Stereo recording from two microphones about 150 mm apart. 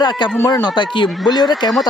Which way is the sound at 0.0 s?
30° left (ahead or behind).